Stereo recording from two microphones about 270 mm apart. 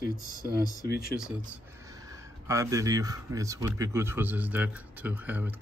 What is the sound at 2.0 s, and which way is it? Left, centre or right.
Speech, centre.